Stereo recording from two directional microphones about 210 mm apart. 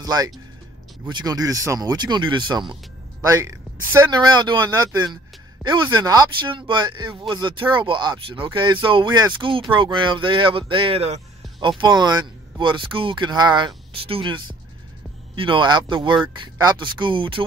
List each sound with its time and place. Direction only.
0.0 s speech: 20° right (ahead or behind)